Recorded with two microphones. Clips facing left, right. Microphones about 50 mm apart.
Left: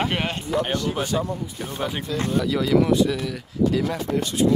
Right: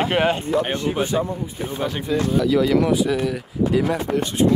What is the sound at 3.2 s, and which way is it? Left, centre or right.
Speech, right.